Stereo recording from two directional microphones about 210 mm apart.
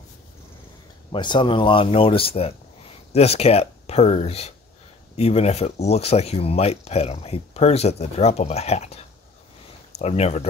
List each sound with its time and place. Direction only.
1.1 s speech: 20° left (ahead or behind)